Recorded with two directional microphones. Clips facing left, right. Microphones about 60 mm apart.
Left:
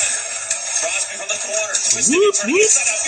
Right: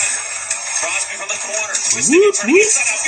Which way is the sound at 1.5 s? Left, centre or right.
Right.